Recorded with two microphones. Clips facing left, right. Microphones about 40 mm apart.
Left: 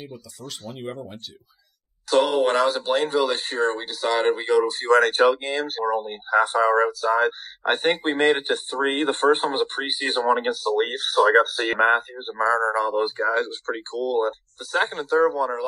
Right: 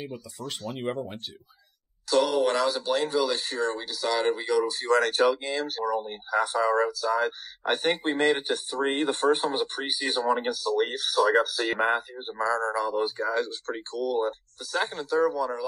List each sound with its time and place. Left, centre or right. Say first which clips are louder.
0.1 s speech: right 2 dB; right
0.7 s speech: right 3 dB; centre
2.0 s speech: left 4 dB; left